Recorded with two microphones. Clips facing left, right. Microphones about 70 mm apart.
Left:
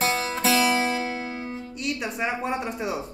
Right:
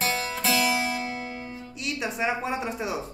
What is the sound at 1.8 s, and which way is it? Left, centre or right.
A woman's voice, centre.